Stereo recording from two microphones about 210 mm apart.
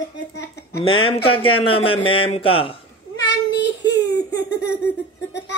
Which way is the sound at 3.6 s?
50° left (ahead or behind).